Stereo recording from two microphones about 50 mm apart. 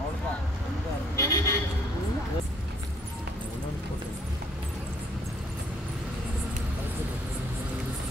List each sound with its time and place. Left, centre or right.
1.1 s vehicle: left